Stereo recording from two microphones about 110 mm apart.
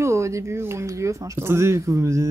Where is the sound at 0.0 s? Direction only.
25° right (ahead or behind).